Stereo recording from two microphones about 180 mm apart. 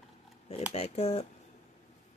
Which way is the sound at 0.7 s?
35° left (ahead or behind).